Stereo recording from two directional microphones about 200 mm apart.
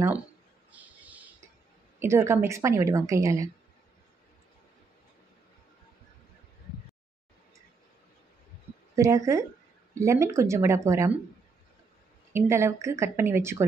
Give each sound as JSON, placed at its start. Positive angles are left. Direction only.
{"t": 0.7, "sound": "a sound", "side_deg": -10}
{"t": 2.0, "sound": "a woman's voice", "side_deg": -10}
{"t": 8.9, "sound": "a woman's voice", "side_deg": -15}
{"t": 12.3, "sound": "a woman's voice", "side_deg": -10}